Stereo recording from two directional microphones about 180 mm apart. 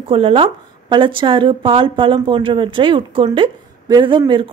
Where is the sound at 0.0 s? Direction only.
30° right (ahead or behind).